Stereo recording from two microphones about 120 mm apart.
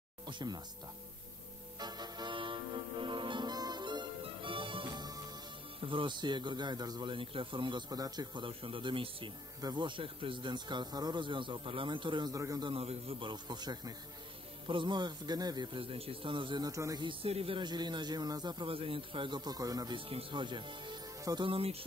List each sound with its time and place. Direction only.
0.3 s speech: 40° right (ahead or behind)
1.8 s music: 35° right (ahead or behind)
5.8 s speech: 45° right (ahead or behind)
8.5 s speech: 45° right (ahead or behind)
12.4 s a man's voice: 30° right (ahead or behind)
12.6 s speech: 55° right (ahead or behind); by 17.0 s 30° right (ahead or behind)
17.0 s speech: 50° right (ahead or behind); by 20.0 s 30° right (ahead or behind)
20.0 s speech: 50° right (ahead or behind)
21.2 s speech: 30° right (ahead or behind)
21.5 s speech: 50° right (ahead or behind)